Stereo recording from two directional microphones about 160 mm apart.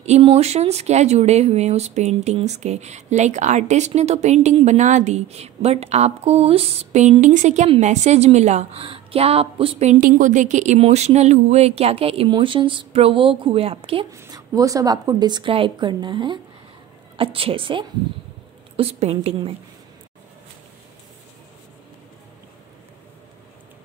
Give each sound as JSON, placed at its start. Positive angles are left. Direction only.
{"t": 0.0, "sound": "speech", "side_deg": -40}
{"t": 14.1, "sound": "a woman's voice", "side_deg": -20}